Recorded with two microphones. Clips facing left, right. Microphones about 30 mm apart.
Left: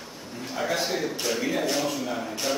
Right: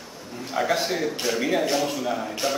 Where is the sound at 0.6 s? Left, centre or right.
Centre.